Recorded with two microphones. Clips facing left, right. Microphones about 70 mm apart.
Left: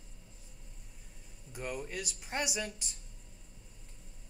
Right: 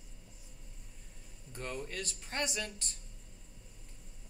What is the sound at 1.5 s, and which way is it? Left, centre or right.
Speech, centre.